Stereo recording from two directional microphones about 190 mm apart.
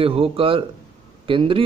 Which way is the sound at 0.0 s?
30° right (ahead or behind).